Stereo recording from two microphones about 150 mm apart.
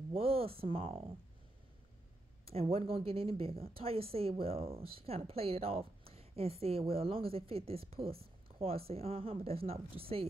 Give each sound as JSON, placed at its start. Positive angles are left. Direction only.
{"t": 0.1, "sound": "speech", "side_deg": -40}
{"t": 2.4, "sound": "a woman's voice", "side_deg": -40}